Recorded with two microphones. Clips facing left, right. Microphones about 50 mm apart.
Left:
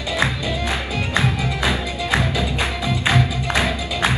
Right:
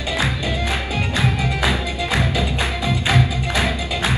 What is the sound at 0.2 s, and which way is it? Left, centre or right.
Music, left.